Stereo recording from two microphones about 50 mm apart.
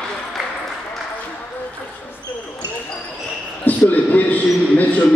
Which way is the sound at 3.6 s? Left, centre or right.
Left.